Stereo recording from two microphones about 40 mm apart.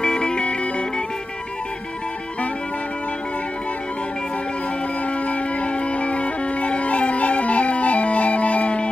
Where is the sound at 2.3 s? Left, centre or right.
Left.